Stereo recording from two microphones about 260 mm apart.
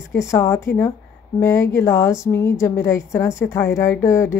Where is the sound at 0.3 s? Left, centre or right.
Centre.